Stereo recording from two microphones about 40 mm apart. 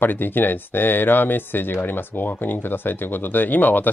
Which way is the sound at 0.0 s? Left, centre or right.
Left.